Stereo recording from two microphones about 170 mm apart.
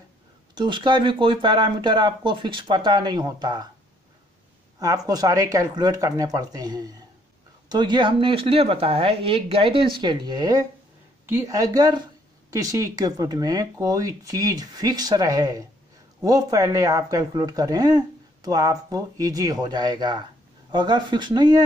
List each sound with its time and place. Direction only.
0.6 s speech: 30° right (ahead or behind)
4.7 s speech: 20° right (ahead or behind)